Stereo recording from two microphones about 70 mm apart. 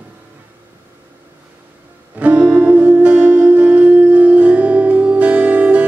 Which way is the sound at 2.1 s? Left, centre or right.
Centre.